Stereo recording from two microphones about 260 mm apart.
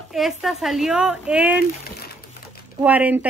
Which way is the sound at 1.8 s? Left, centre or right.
Left.